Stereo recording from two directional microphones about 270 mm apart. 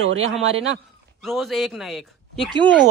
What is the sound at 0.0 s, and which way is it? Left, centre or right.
Speech, right.